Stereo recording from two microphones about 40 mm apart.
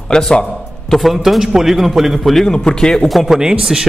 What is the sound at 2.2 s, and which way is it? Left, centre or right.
Speech, centre.